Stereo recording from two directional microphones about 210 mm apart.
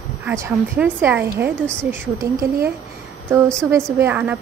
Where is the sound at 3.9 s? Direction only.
10° right (ahead or behind).